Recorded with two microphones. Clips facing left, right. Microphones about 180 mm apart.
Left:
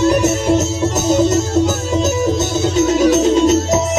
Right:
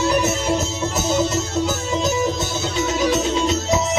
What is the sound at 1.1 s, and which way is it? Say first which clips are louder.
Music: left 8 dB; 45° left (ahead or behind).